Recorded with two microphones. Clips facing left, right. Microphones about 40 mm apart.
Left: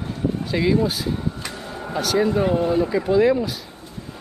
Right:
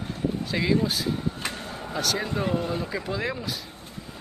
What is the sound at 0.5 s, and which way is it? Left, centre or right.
Speech, centre.